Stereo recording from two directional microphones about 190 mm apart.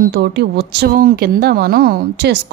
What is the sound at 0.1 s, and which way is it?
A woman's voice, 65° right (ahead or behind).